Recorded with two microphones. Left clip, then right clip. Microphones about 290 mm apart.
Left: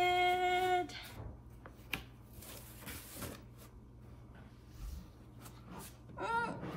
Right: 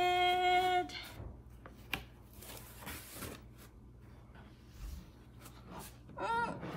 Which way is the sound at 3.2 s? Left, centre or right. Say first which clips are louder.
Even; centre.